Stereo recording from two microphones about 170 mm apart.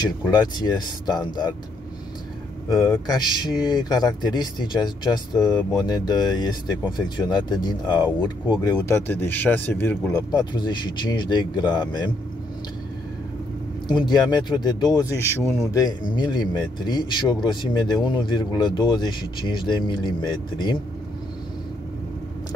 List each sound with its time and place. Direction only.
0.0 s speech: 20° left (ahead or behind)
2.7 s speech: 20° left (ahead or behind)
10.3 s speech: 25° left (ahead or behind)
13.8 s speech: 25° left (ahead or behind)
15.1 s speech: 15° right (ahead or behind)
16.2 s speech: 25° left (ahead or behind)